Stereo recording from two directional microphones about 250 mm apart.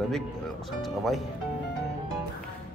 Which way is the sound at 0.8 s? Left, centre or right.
Centre.